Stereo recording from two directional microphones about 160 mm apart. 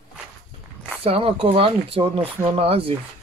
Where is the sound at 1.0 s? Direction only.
35° right (ahead or behind).